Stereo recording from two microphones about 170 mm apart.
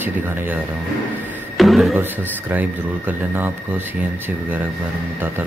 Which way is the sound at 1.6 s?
Centre (ahead or behind).